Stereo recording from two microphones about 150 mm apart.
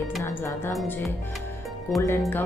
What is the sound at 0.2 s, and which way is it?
Speech, 15° left (ahead or behind).